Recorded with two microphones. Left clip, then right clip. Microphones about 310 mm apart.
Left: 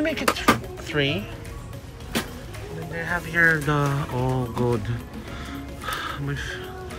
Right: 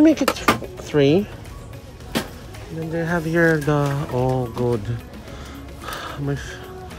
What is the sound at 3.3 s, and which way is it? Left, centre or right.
Speech, centre.